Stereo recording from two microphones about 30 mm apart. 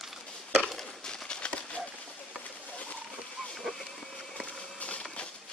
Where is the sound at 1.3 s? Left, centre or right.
Left.